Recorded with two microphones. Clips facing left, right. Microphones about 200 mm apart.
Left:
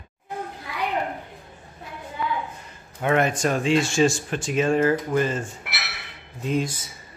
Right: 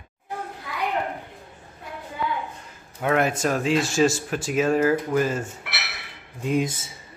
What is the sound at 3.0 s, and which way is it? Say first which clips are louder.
Speech: left 1 dB; centre (ahead or behind).